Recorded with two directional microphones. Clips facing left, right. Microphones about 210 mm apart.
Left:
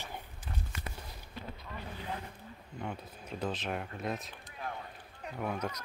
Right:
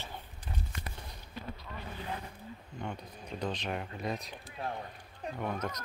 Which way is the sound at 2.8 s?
5° left (ahead or behind).